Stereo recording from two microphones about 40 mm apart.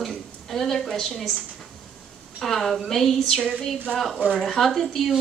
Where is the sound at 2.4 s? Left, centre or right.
Centre.